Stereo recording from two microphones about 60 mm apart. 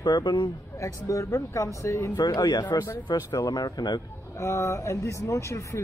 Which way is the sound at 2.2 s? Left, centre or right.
Left.